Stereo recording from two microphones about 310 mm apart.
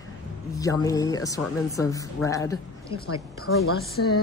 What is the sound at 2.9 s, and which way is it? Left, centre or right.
A woman's voice, left.